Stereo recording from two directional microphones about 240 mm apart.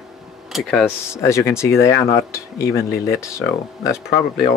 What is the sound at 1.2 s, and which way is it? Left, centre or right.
Speech, centre.